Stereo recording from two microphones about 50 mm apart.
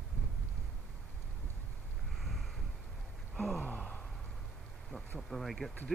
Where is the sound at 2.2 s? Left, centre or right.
Centre.